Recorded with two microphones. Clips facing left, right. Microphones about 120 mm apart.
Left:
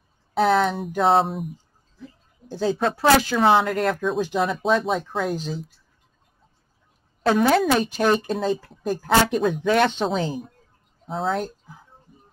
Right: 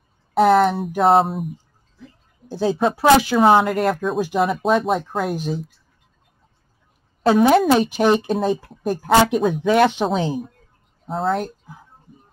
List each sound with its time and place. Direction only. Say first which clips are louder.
0.4 s speech: right 5 dB; 5° right (ahead or behind)
3.0 s speech: right 4 dB; 15° right (ahead or behind)
7.2 s speech: right 4 dB; 20° right (ahead or behind); by 11.4 s centre (ahead or behind)